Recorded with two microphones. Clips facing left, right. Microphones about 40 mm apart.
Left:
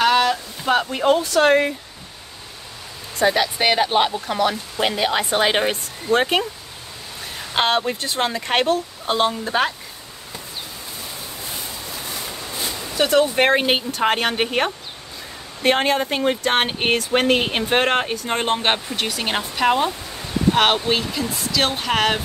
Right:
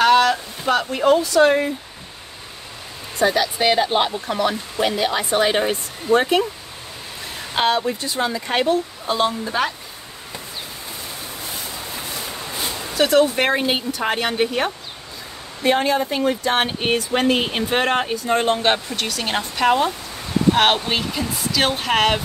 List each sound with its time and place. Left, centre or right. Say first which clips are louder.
0.0 s a sound: right 2 dB; centre
1.0 s speech: right 3 dB; left
1.3 s speech: even; left
3.6 s speech: even; left
7.5 s speech: even; left
9.1 s speech: left 1 dB; left
12.3 s a sound: right 1 dB; centre
13.1 s speech: left 1 dB; left
13.7 s speech: left 2 dB; left
18.4 s speech: even; left
18.9 s speech: even; centre